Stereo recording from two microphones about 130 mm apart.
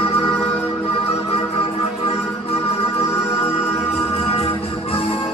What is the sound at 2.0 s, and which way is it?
Music, 50° left (ahead or behind).